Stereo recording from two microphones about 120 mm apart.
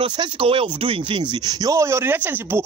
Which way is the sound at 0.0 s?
40° right (ahead or behind).